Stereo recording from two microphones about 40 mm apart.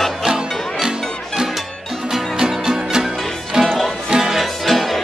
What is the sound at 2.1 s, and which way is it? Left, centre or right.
Music, centre.